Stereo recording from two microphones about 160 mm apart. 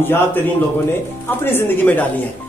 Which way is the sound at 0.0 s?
15° left (ahead or behind).